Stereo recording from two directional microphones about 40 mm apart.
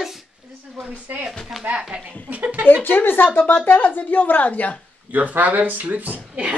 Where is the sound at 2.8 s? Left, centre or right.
Left.